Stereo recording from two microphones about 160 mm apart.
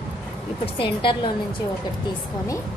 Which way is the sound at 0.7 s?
30° left (ahead or behind).